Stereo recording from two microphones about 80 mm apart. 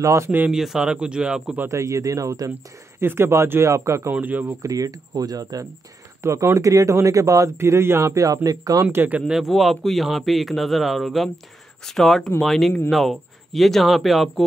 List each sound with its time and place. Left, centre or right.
0.0 s speech: right
0.5 s speech: centre
1.7 s speech: right
3.0 s speech: right
4.1 s speech: right
4.6 s speech: right
6.2 s speech: right
8.9 s speech: right
9.3 s a man's voice: centre